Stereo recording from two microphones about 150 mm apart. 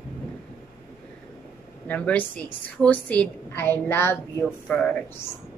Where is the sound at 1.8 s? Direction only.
10° left (ahead or behind).